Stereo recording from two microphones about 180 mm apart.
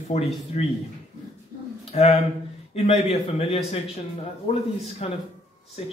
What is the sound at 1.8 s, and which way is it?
A man's voice, 35° left (ahead or behind).